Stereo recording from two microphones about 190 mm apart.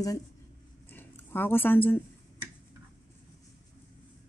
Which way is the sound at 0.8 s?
10° left (ahead or behind).